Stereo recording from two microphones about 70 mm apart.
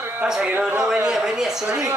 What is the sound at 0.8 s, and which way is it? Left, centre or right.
Speech, centre.